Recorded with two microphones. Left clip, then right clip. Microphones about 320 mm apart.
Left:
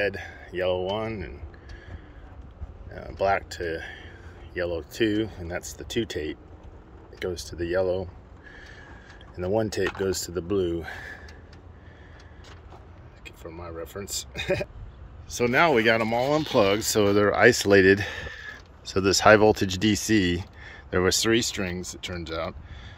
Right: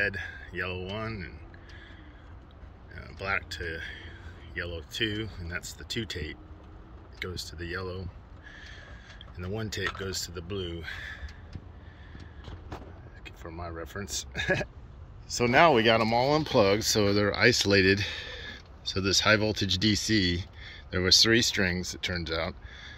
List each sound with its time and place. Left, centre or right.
0.0 s speech: centre
2.9 s speech: centre
7.2 s a sound: centre
9.4 s speech: centre
13.2 s speech: centre